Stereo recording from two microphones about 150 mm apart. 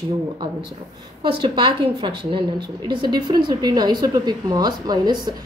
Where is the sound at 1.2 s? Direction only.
30° right (ahead or behind).